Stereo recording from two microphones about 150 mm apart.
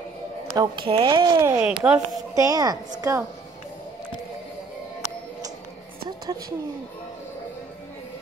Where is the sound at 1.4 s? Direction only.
10° right (ahead or behind).